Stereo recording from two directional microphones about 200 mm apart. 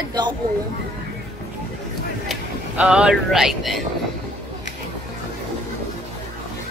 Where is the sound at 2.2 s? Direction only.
5° right (ahead or behind).